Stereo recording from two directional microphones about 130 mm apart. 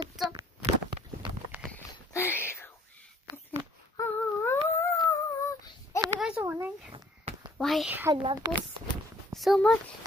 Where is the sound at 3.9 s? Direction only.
20° left (ahead or behind).